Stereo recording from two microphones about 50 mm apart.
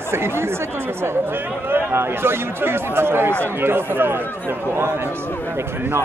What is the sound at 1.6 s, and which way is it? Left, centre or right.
A man's voice, right.